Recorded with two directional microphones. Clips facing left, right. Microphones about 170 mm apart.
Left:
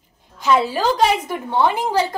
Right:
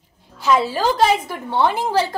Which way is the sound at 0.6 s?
10° left (ahead or behind).